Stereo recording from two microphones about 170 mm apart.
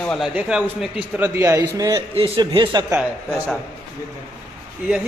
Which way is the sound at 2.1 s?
35° right (ahead or behind).